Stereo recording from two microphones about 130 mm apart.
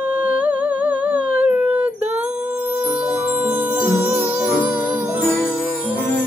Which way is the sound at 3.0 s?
15° right (ahead or behind).